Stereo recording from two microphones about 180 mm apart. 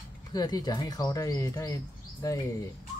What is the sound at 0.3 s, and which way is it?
Speech, 20° left (ahead or behind).